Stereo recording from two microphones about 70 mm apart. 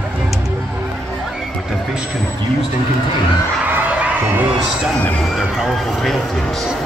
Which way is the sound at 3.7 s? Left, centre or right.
Right.